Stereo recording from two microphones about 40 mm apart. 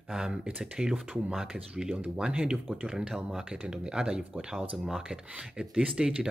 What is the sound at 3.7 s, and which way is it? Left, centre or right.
Speech, centre.